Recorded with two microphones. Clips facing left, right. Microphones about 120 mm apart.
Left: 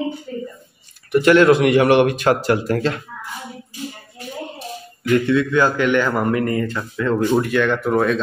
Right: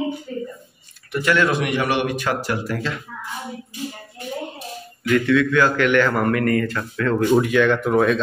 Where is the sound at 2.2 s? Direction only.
50° left (ahead or behind).